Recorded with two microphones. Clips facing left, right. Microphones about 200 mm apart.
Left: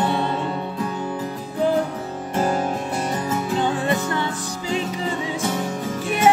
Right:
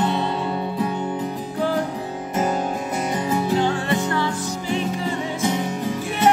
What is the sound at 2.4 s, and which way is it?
Music, centre (ahead or behind).